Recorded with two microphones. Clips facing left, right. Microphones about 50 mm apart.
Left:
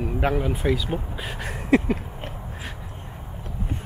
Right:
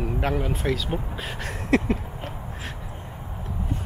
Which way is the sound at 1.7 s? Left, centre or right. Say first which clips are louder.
Left 2 dB; centre.